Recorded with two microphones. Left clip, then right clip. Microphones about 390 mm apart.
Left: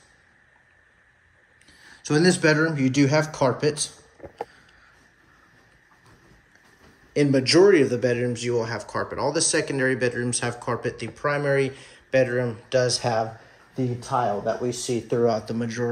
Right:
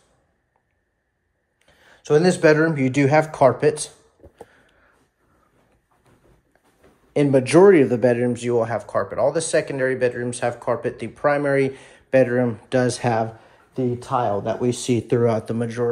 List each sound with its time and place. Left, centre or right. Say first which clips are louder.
1.7 s speech: right 7 dB; centre
7.2 s speech: right 3 dB; centre
13.9 s speech: right 1 dB; right
15.4 s speech: right 4 dB; centre